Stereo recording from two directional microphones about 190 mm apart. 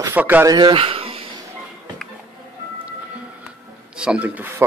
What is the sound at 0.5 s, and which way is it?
Speech, 25° right (ahead or behind).